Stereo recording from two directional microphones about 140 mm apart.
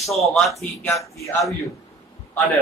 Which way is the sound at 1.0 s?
20° left (ahead or behind).